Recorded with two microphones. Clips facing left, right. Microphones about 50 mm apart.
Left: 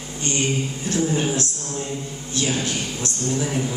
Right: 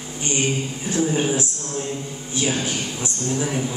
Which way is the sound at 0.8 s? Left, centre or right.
Centre.